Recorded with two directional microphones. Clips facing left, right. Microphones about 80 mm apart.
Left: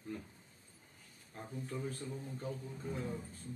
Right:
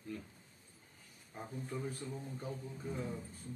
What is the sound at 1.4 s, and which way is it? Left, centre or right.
Speech, centre.